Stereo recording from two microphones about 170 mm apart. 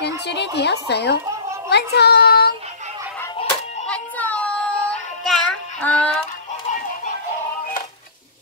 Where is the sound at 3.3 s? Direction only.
40° left (ahead or behind).